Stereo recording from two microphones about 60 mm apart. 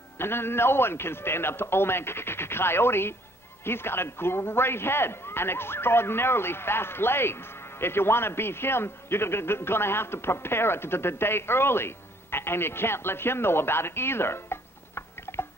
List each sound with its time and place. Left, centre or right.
0.2 s a man's voice: left